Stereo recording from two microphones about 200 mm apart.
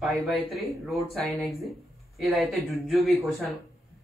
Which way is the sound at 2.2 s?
Centre (ahead or behind).